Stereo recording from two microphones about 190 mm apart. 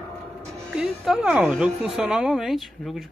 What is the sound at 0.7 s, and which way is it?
A woman's voice, centre (ahead or behind).